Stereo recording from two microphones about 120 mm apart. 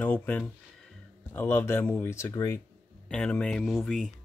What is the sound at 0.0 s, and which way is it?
A man's voice, 15° left (ahead or behind).